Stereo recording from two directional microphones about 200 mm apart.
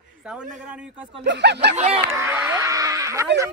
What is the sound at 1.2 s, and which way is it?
Speech, 60° right (ahead or behind).